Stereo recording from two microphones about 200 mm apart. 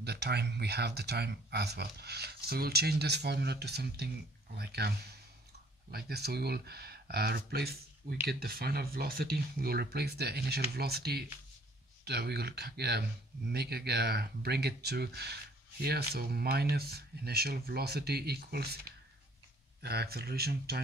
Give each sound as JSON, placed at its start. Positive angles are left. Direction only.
{"t": 0.0, "sound": "speech", "side_deg": -55}
{"t": 19.8, "sound": "speech", "side_deg": -55}